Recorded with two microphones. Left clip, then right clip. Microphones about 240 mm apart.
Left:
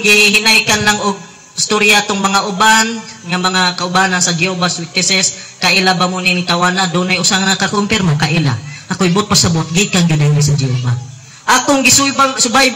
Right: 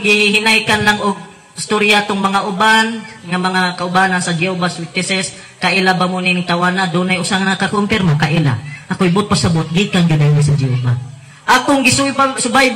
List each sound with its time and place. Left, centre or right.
0.0 s a man's voice: left